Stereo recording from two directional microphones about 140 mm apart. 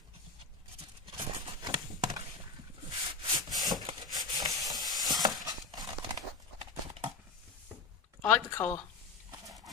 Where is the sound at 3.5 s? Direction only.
30° right (ahead or behind).